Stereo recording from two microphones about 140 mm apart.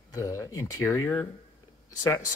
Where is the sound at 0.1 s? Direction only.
25° left (ahead or behind).